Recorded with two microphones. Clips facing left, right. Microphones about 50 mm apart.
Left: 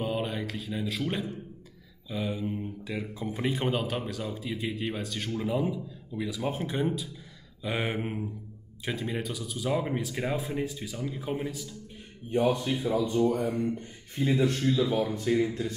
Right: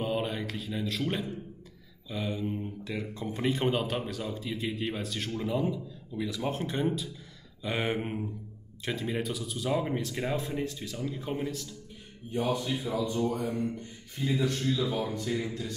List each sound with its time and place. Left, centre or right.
0.0 s speech: centre
12.8 s speech: left